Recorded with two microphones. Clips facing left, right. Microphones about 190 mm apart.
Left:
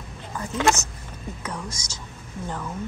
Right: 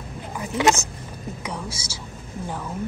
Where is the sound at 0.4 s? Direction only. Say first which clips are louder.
Right 2 dB; 15° right (ahead or behind).